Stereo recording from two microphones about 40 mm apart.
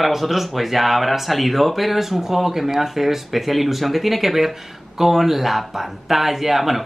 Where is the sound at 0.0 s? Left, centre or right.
Centre.